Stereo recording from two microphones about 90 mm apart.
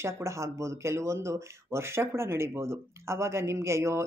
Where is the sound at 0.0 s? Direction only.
30° right (ahead or behind).